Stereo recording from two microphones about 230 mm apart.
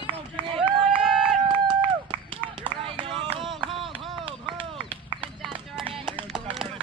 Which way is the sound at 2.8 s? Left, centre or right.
Right.